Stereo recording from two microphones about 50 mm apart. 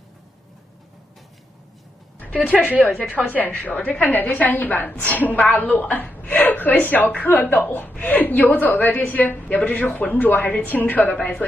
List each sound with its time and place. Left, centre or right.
2.1 s music: left
2.7 s a woman's voice: right
3.3 s a woman's voice: left